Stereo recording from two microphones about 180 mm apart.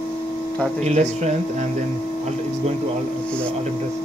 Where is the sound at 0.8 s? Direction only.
40° right (ahead or behind).